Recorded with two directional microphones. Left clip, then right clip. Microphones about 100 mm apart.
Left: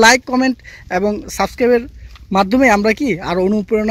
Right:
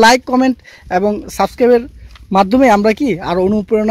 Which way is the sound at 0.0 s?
20° right (ahead or behind).